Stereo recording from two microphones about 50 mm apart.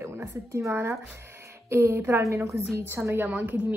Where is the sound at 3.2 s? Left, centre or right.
Right.